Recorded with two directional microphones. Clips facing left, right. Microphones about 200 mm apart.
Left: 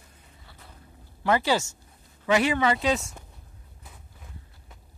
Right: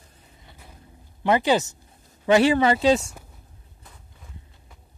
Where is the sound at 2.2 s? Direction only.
30° right (ahead or behind).